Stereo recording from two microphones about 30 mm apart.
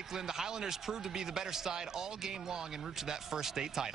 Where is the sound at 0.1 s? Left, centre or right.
Centre.